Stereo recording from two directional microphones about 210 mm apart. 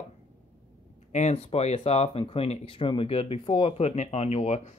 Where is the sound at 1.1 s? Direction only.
30° left (ahead or behind).